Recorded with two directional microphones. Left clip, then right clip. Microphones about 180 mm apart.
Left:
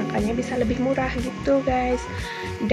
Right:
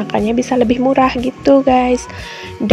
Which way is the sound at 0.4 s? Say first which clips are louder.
Right 10 dB; 40° right (ahead or behind).